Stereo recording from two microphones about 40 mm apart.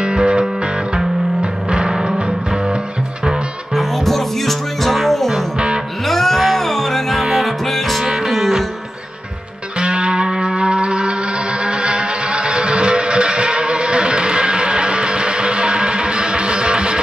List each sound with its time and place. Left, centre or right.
0.0 s music: right
3.7 s music: centre
5.3 s music: right
6.0 s music: centre
9.8 s music: right